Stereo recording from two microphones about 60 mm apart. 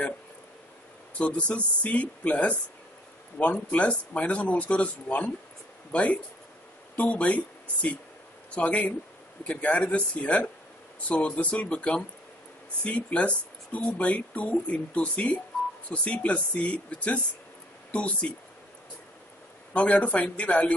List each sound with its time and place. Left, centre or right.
1.1 s speech: left
19.7 s speech: left